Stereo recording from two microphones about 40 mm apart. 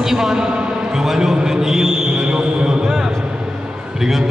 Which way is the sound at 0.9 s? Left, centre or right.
Centre.